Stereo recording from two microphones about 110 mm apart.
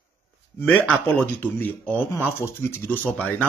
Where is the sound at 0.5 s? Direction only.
15° left (ahead or behind).